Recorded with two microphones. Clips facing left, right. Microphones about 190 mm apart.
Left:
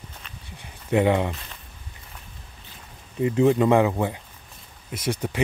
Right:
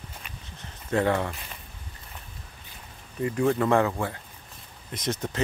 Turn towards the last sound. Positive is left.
turn(degrees=10)  # may be behind; listen again after turning